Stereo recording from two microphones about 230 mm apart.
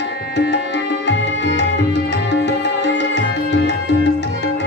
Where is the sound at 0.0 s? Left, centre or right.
Left.